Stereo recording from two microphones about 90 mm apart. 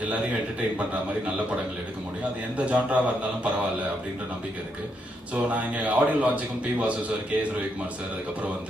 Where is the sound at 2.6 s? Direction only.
15° right (ahead or behind).